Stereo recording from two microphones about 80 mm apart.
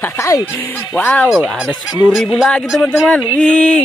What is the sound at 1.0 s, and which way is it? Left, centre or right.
Speech, left.